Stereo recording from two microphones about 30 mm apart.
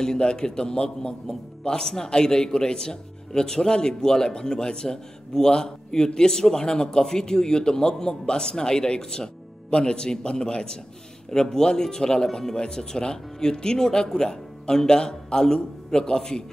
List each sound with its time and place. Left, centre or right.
0.2 s a man's voice: left